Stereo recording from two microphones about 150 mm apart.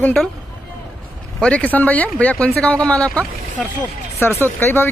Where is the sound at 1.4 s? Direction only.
10° left (ahead or behind).